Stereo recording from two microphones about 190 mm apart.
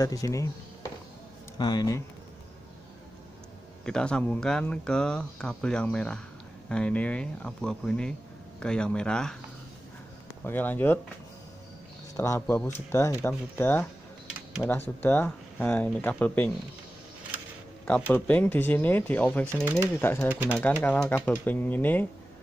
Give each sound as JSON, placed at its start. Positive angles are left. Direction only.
{"t": 0.0, "sound": "speech", "side_deg": 20}
{"t": 1.6, "sound": "speech", "side_deg": 20}
{"t": 3.8, "sound": "speech", "side_deg": 5}
{"t": 10.4, "sound": "speech", "side_deg": 10}
{"t": 12.2, "sound": "speech", "side_deg": 15}
{"t": 17.8, "sound": "speech", "side_deg": 10}
{"t": 19.5, "sound": "speech", "side_deg": -10}
{"t": 20.0, "sound": "speech", "side_deg": 10}
{"t": 20.2, "sound": "speech", "side_deg": -10}
{"t": 20.8, "sound": "speech", "side_deg": 10}